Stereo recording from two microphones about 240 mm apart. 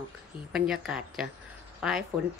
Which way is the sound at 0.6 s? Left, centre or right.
Centre.